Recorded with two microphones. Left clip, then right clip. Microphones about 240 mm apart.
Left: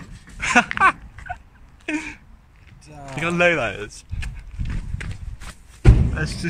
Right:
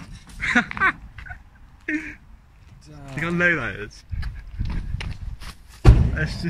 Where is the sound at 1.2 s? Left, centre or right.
Left.